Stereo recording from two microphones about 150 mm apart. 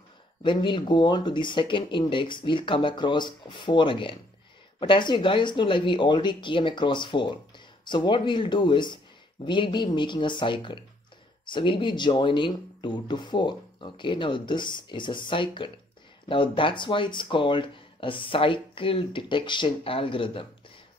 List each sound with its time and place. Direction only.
0.4 s speech: 30° left (ahead or behind)